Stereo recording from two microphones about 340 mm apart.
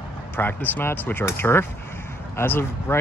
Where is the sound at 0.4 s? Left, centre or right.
Centre.